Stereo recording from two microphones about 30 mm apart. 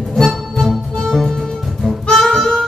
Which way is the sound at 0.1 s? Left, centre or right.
Centre.